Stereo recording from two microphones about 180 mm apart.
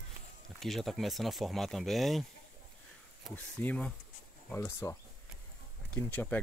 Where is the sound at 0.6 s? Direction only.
Centre (ahead or behind).